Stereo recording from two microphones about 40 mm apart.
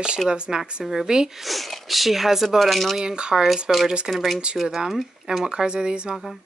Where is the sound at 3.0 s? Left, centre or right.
Centre.